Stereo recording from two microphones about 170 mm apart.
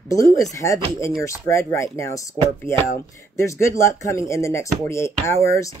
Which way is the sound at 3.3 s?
15° left (ahead or behind).